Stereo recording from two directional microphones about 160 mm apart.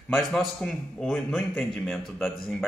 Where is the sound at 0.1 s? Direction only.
5° left (ahead or behind).